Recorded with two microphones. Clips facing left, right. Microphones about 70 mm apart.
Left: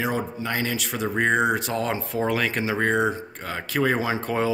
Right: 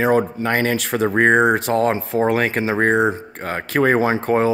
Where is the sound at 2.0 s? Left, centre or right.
Right.